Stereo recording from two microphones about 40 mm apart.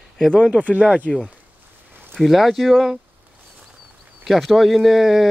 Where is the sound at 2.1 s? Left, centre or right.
Centre.